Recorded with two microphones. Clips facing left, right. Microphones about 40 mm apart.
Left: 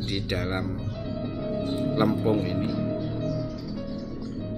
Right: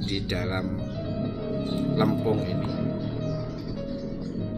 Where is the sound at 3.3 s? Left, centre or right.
Right.